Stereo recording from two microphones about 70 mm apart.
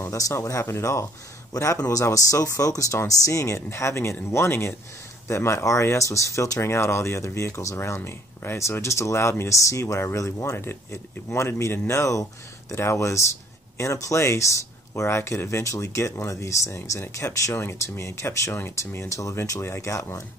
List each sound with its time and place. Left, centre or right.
0.0 s speech: left
1.5 s speech: left
8.5 s speech: left
9.6 s speech: left